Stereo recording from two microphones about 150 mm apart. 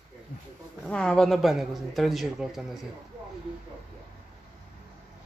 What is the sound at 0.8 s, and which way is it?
A man's voice, 5° left (ahead or behind).